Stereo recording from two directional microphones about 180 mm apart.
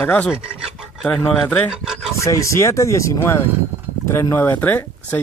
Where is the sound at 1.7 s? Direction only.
5° right (ahead or behind).